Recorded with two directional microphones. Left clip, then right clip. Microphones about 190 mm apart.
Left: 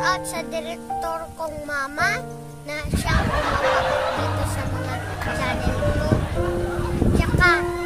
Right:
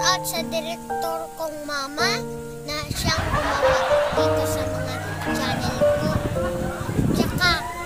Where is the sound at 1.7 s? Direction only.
5° left (ahead or behind).